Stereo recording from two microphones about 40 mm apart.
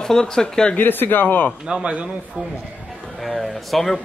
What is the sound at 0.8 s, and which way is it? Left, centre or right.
Speech, left.